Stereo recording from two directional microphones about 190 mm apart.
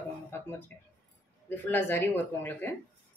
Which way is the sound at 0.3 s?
10° left (ahead or behind).